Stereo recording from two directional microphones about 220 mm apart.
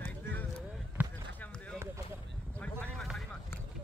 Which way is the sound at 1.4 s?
5° left (ahead or behind).